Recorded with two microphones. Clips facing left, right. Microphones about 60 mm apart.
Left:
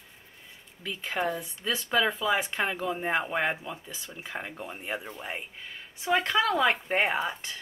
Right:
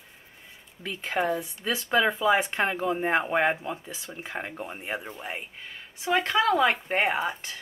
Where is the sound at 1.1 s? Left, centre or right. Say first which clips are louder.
Right 4 dB; centre.